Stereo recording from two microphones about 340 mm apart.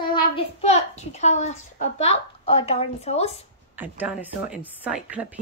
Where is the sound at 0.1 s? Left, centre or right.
Centre.